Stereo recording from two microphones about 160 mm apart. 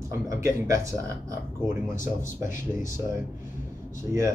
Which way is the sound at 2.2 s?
55° left (ahead or behind).